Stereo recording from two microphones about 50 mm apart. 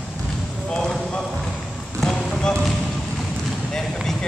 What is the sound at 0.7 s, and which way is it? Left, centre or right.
Clip-clop, centre.